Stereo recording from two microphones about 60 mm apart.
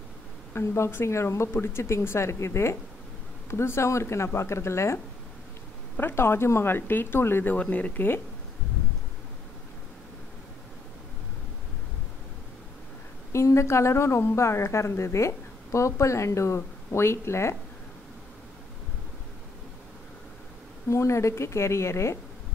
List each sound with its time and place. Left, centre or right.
0.5 s a woman's voice: left
5.9 s speech: left
7.5 s speech: left
13.3 s a woman's voice: left
20.9 s a woman's voice: left